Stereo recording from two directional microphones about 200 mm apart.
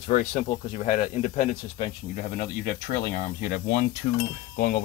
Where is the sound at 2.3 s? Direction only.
50° left (ahead or behind).